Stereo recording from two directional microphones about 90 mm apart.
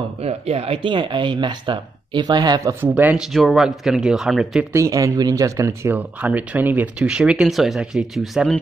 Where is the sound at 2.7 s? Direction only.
20° right (ahead or behind).